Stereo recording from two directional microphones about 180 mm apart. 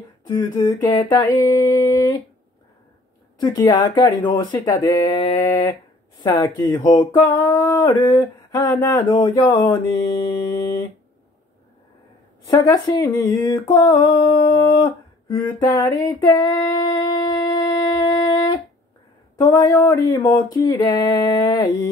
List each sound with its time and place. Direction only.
0.3 s humming: 20° left (ahead or behind)
3.3 s speech: 20° left (ahead or behind)
6.2 s humming: 15° left (ahead or behind)
8.5 s speech: 20° left (ahead or behind)
12.4 s speech: 20° left (ahead or behind)
15.2 s female singing: 20° left (ahead or behind)
19.4 s speech: 20° left (ahead or behind)